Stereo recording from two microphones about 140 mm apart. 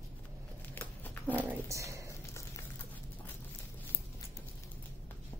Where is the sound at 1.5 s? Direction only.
20° right (ahead or behind).